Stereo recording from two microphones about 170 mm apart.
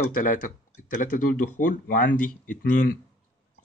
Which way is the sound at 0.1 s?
50° left (ahead or behind).